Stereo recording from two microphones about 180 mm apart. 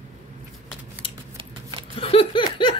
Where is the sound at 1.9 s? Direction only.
30° left (ahead or behind).